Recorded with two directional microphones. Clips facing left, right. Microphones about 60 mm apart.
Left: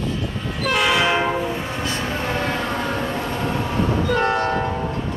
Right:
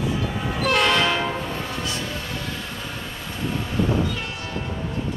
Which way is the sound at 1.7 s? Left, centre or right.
Left.